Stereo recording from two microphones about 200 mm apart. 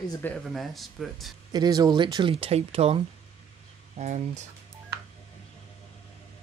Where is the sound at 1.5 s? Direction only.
20° right (ahead or behind).